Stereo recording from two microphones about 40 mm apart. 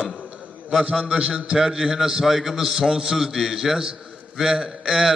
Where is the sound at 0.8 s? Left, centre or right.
Right.